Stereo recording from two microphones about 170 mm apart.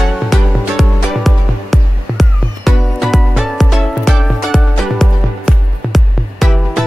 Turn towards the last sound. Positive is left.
turn(degrees=0)  # may be behind; listen again after turning